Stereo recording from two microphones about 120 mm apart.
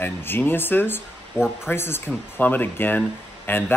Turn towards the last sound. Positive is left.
turn(degrees=15)  # may be behind; listen again after turning